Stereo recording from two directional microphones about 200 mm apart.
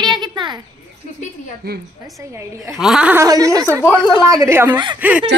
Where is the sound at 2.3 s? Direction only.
5° right (ahead or behind).